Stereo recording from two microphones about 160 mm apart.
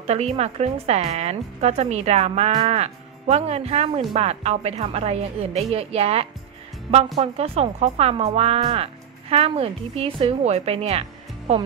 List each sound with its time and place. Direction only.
0.0 s speech: 40° right (ahead or behind)